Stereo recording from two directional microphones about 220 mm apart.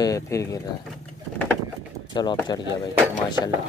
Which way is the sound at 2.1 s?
20° left (ahead or behind).